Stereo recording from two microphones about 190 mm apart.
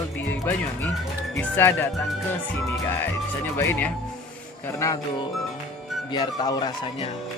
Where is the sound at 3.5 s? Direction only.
10° left (ahead or behind).